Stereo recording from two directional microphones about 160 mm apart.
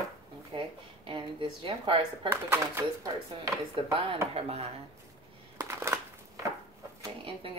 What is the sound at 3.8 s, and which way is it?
Speech, 30° right (ahead or behind).